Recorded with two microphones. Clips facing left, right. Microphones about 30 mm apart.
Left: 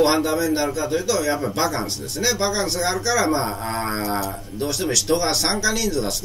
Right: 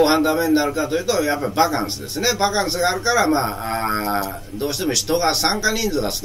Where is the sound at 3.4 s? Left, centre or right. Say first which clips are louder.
Right 3 dB; centre.